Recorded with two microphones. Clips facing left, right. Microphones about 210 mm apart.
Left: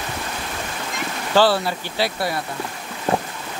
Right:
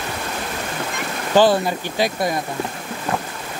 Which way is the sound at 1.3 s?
15° right (ahead or behind).